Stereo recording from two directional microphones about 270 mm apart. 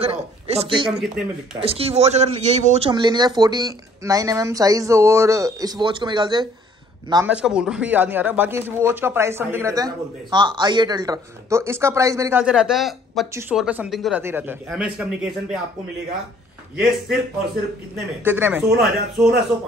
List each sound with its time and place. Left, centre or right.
0.0 s speech: right
0.8 s a man's voice: centre
1.6 s a man's voice: right; by 15.5 s centre
18.2 s a man's voice: centre